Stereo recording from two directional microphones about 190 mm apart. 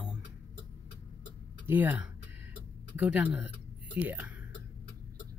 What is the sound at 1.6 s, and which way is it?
Speech, 10° right (ahead or behind).